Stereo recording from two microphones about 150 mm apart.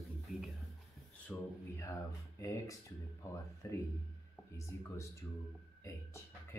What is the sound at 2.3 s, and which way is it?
Speech, 20° left (ahead or behind).